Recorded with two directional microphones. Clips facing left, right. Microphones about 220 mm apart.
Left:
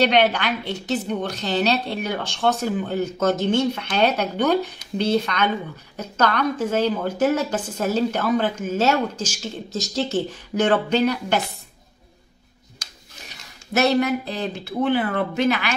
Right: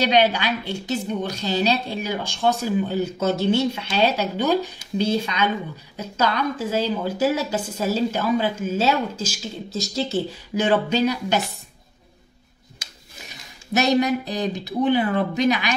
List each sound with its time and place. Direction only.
0.3 s a woman's voice: 10° right (ahead or behind)
13.7 s a woman's voice: 15° right (ahead or behind)